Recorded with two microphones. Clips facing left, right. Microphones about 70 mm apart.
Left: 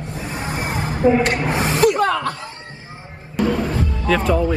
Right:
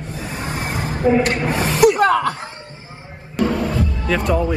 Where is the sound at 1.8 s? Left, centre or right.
Centre.